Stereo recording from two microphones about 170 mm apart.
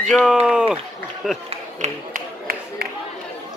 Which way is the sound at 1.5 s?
45° right (ahead or behind).